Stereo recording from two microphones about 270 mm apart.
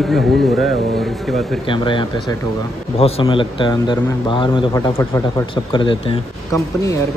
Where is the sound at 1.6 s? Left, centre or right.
Centre.